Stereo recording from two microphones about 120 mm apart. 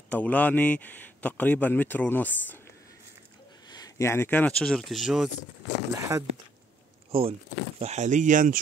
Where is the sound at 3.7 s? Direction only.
30° left (ahead or behind); by 5.3 s centre (ahead or behind).